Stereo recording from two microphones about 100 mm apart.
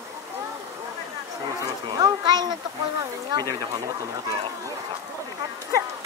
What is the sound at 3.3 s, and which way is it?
Speech, 40° right (ahead or behind).